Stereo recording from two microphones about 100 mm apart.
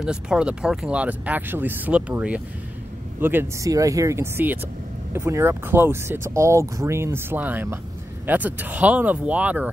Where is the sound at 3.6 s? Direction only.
35° right (ahead or behind).